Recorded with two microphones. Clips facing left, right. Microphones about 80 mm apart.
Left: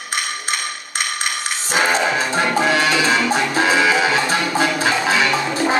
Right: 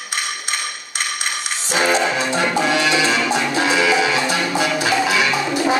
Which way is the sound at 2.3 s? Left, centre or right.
Left.